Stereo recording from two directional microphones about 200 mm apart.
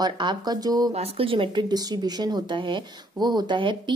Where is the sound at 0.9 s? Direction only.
30° right (ahead or behind).